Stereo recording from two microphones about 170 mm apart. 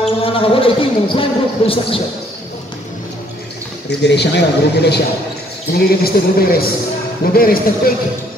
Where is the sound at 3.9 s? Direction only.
85° left.